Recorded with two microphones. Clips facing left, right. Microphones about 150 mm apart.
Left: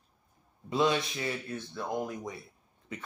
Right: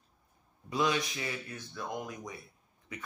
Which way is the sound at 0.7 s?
25° left (ahead or behind).